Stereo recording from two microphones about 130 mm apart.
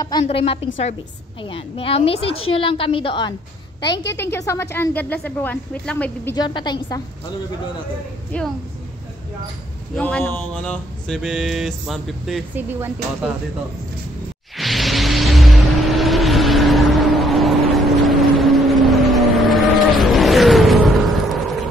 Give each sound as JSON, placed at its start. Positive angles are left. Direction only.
{"t": 0.2, "sound": "a woman's voice", "side_deg": 45}
{"t": 4.2, "sound": "speech", "side_deg": 20}
{"t": 6.3, "sound": "a woman's voice", "side_deg": 35}
{"t": 8.3, "sound": "speech", "side_deg": 10}
{"t": 10.2, "sound": "a sound", "side_deg": 15}
{"t": 12.5, "sound": "speech", "side_deg": -15}
{"t": 14.6, "sound": "vehicle", "side_deg": 0}